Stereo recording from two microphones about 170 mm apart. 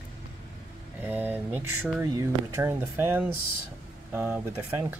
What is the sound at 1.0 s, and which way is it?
Speech, 10° right (ahead or behind).